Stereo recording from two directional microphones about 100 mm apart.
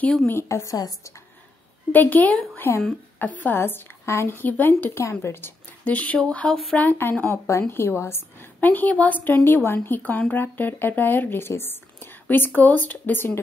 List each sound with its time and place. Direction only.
0.3 s a woman's voice: 25° left (ahead or behind)
1.9 s a woman's voice: 15° left (ahead or behind)